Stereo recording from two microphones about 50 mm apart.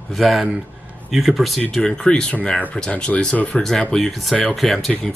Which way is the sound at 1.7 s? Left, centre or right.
Centre.